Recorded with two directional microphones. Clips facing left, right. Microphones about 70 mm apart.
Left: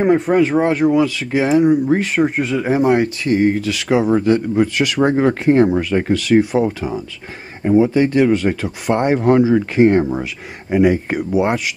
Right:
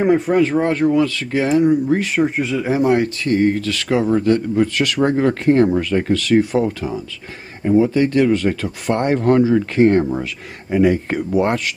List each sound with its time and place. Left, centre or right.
0.3 s speech: centre
2.1 s speech: centre